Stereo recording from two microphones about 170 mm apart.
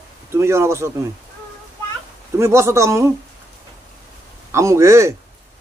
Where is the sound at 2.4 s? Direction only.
15° right (ahead or behind).